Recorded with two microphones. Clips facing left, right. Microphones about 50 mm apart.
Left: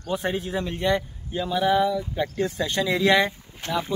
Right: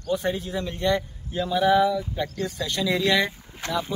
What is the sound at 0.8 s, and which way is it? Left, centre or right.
Speech, centre.